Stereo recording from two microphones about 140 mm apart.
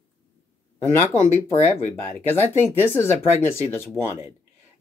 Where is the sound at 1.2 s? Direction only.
55° left (ahead or behind).